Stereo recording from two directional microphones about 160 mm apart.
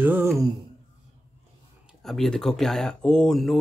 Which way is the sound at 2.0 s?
Centre (ahead or behind).